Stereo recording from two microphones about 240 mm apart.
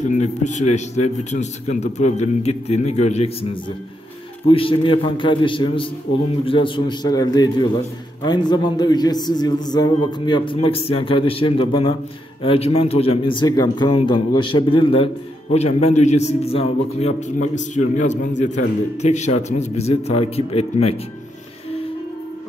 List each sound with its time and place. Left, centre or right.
0.1 s a man's voice: left
4.5 s a man's voice: left